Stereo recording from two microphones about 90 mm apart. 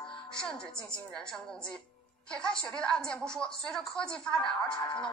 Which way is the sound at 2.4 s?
10° left (ahead or behind).